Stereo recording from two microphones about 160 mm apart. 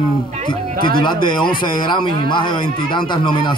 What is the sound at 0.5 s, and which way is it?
Speech, 30° left (ahead or behind).